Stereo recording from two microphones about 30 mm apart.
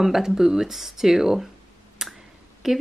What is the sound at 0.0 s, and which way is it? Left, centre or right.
Speech, centre.